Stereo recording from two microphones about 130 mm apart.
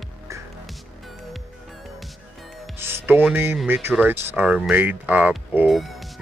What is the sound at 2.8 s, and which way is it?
Music, 15° right (ahead or behind).